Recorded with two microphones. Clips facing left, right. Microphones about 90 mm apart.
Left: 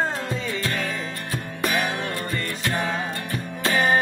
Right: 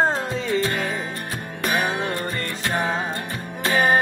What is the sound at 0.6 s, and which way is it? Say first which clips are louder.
Music: right 3 dB; 25° right (ahead or behind).